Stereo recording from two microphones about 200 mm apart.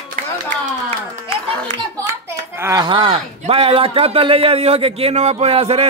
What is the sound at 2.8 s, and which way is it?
A man's voice, 25° right (ahead or behind).